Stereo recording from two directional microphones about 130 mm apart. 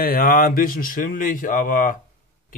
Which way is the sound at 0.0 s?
90° left.